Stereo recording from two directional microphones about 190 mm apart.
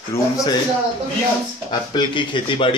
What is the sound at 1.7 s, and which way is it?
A man's voice, 25° left (ahead or behind).